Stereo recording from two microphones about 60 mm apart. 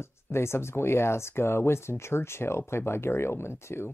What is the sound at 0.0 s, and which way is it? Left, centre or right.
Speech, left.